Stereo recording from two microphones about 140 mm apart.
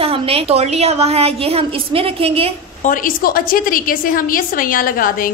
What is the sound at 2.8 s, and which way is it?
A woman's voice, 80° left.